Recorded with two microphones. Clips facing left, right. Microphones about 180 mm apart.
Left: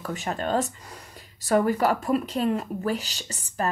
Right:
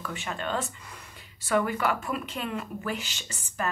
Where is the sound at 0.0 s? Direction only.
40° left (ahead or behind).